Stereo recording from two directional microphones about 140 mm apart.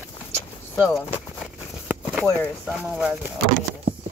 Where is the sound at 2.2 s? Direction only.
10° left (ahead or behind).